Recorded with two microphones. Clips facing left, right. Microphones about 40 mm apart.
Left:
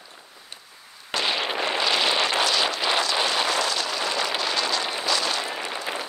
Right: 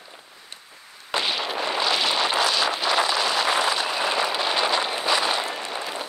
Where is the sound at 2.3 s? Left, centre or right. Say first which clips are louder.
Right 1 dB; centre.